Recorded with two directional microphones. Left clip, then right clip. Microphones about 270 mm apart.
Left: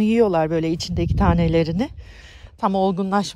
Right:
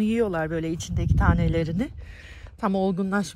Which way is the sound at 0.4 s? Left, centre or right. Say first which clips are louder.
Left 7 dB; left.